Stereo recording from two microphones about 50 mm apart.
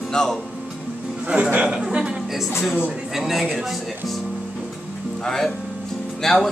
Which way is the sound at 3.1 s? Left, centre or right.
Centre.